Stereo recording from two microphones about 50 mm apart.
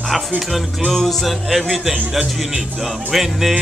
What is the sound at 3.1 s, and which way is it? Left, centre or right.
Music, centre.